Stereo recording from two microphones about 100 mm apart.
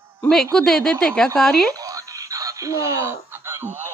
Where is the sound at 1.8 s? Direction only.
35° right (ahead or behind).